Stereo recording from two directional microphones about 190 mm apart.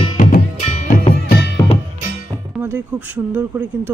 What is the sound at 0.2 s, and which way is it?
Music, 50° left (ahead or behind).